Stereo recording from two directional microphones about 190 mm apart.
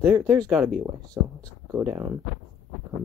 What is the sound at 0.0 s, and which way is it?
Speech, 15° right (ahead or behind).